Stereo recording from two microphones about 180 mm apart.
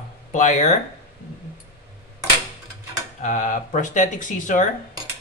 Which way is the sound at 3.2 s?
45° left (ahead or behind).